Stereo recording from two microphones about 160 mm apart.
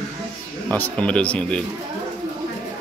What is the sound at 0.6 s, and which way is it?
Speech, 10° left (ahead or behind).